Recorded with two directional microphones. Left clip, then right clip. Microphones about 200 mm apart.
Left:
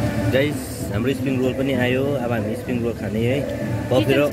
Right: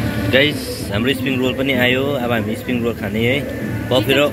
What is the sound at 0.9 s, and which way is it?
Speech, centre (ahead or behind).